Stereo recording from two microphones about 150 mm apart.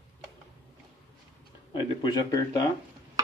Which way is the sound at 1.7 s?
30° left (ahead or behind).